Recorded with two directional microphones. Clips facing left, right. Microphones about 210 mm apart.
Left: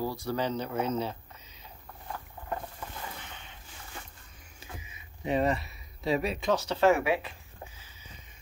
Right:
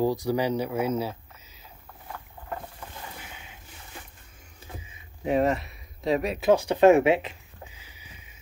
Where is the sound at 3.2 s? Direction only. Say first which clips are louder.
Right 2 dB; 5° right (ahead or behind).